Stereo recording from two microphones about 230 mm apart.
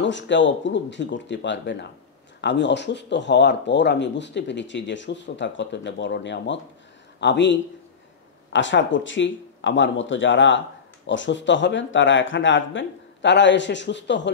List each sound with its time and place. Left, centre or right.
0.0 s speech: left